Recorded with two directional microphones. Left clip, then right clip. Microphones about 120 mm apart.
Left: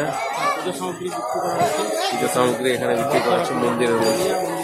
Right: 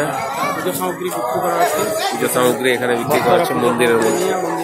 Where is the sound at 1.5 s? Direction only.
15° right (ahead or behind).